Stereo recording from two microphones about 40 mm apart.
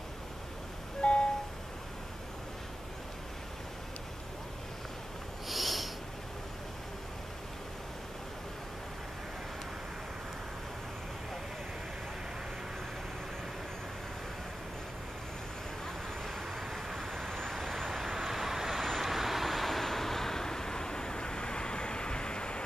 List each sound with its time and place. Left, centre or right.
1.0 s vehicle: left
5.5 s snort: centre
16.4 s vehicle: centre